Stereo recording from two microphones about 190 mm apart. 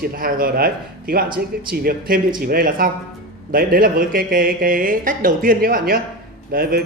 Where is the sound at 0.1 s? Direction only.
50° right (ahead or behind).